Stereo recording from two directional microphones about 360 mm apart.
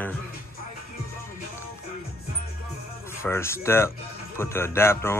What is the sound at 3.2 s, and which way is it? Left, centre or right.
Speech, centre.